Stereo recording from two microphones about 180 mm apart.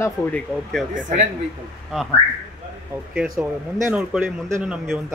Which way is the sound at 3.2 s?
Centre (ahead or behind).